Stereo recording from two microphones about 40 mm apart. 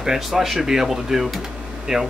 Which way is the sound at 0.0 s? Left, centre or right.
Centre.